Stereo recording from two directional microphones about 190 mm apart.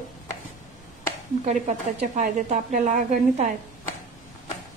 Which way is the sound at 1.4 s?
35° right (ahead or behind).